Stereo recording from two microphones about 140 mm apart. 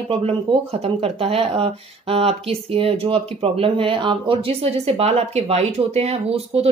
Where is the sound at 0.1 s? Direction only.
45° right (ahead or behind).